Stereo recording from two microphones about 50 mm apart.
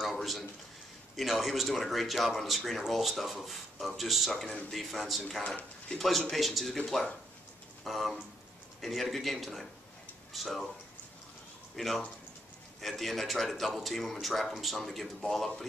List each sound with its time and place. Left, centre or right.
0.0 s a sound: centre
1.1 s speech: centre
7.8 s speech: centre
11.7 s speech: centre